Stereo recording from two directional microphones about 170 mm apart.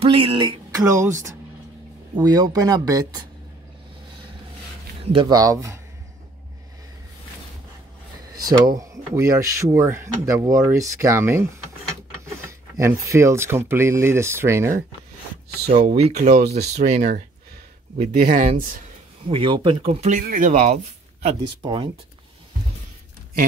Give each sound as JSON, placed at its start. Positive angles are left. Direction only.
{"t": 0.0, "sound": "speech", "side_deg": -30}
{"t": 5.0, "sound": "speech", "side_deg": -30}
{"t": 8.4, "sound": "speech", "side_deg": -20}
{"t": 12.4, "sound": "speech", "side_deg": -20}
{"t": 15.6, "sound": "speech", "side_deg": -35}
{"t": 18.2, "sound": "speech", "side_deg": -50}
{"t": 19.2, "sound": "speech", "side_deg": -30}
{"t": 21.6, "sound": "speech", "side_deg": -25}